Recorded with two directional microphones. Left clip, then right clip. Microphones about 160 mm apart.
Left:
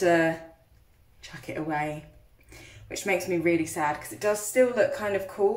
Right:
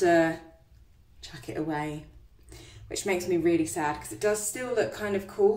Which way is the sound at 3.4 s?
15° right (ahead or behind).